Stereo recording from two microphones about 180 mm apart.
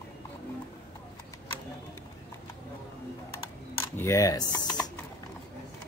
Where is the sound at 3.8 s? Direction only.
15° left (ahead or behind).